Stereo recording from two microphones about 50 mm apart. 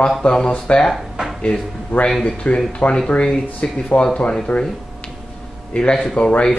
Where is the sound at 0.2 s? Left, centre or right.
Centre.